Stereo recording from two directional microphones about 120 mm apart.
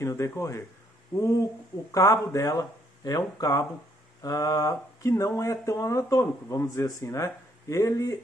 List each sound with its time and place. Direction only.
0.0 s speech: 25° left (ahead or behind)